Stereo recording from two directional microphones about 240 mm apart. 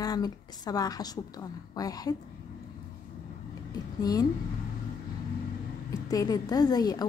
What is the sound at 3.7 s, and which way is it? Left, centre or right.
Speech, centre.